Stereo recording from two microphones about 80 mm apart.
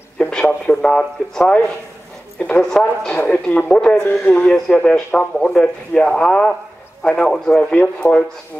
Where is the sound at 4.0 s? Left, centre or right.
Left.